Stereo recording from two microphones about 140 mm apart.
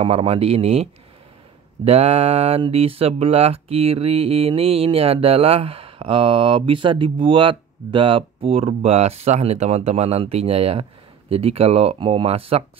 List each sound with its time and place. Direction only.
0.0 s mantra: 45° right (ahead or behind)
1.9 s mantra: 50° right (ahead or behind)